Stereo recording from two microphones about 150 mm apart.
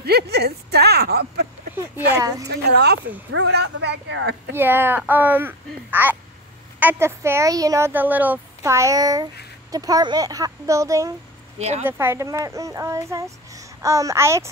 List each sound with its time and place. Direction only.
0.0 s speech: 90° right
1.8 s speech: 20° right (ahead or behind)
2.5 s speech: 90° right
4.5 s speech: 15° right (ahead or behind)
11.5 s speech: 45° right (ahead or behind)
11.8 s speech: 15° right (ahead or behind)